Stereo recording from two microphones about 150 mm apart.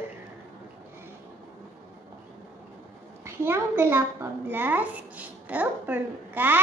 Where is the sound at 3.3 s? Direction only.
15° right (ahead or behind).